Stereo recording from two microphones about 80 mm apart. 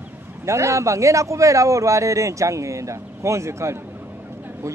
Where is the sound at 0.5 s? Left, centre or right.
Right.